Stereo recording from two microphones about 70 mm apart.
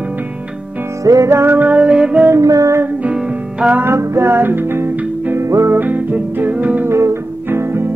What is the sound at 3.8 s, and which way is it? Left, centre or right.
Music, right.